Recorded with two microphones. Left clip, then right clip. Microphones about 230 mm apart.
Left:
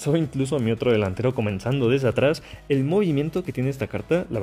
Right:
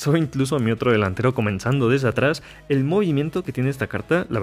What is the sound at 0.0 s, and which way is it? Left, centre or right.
Speech, right.